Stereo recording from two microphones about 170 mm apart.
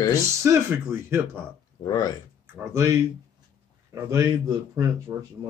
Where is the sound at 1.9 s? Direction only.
20° left (ahead or behind).